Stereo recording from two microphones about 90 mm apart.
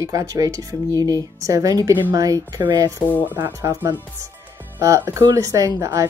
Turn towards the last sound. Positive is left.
turn(degrees=-35)  # may be behind; listen again after turning